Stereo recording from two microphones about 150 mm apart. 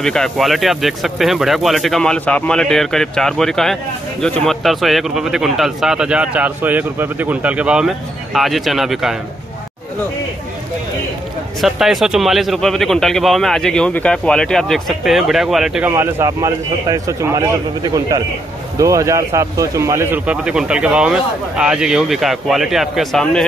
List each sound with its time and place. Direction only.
0.0 s speech: 5° left (ahead or behind)
11.6 s speech: centre (ahead or behind)
15.9 s a man's voice: 20° right (ahead or behind); by 23.4 s centre (ahead or behind)